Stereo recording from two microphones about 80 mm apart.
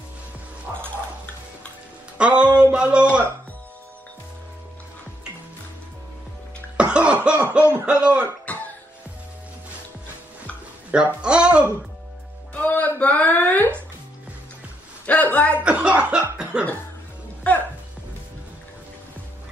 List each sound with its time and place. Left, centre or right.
2.1 s music: centre
2.6 s a sound: centre
6.8 s cough: centre
7.2 s a sound: centre
7.8 s speech: centre
8.5 s music: left
10.9 s speech: centre
12.5 s a sound: left
15.0 s a man's voice: left
15.6 s chuckle: centre